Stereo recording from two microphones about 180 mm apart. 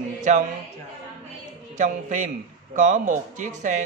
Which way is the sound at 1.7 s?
45° right (ahead or behind).